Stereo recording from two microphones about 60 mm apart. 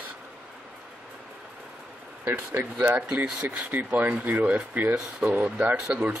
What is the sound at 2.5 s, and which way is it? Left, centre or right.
Speech, right.